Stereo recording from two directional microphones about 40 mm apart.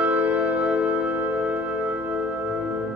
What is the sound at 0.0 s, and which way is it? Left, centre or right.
Music, right.